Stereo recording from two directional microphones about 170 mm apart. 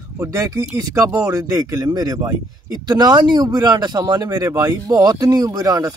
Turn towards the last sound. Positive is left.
turn(degrees=-20)  # may be behind; listen again after turning